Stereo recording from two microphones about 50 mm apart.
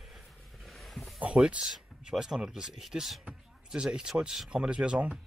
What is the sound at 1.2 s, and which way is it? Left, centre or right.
Speech, right.